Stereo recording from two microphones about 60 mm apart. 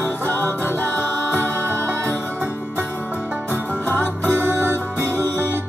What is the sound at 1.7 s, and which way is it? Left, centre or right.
Music, right.